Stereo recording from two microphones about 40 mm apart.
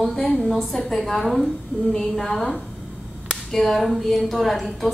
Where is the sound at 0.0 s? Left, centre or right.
Centre.